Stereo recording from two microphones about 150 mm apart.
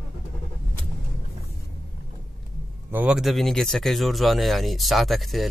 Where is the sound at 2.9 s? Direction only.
10° right (ahead or behind).